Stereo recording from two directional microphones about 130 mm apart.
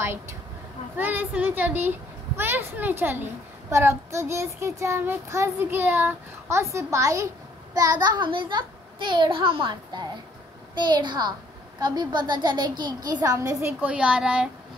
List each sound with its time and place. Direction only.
0.0 s a sound: 20° right (ahead or behind)
0.9 s a child's voice: 15° right (ahead or behind)
3.7 s child singing: 20° right (ahead or behind)
7.7 s a child's voice: 30° right (ahead or behind)
13.7 s a child's voice: 10° right (ahead or behind)